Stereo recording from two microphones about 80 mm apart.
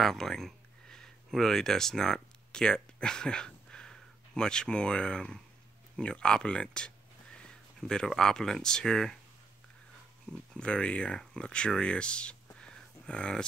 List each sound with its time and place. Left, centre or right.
0.0 s speech: centre
10.5 s speech: centre
12.5 s a sound: centre